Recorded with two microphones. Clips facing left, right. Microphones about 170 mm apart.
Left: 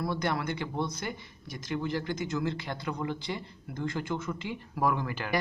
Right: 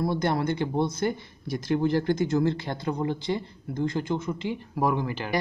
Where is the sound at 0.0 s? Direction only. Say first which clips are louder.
Right 5 dB; 25° right (ahead or behind).